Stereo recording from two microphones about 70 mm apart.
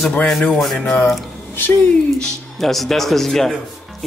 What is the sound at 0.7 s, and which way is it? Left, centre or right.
Speech, centre.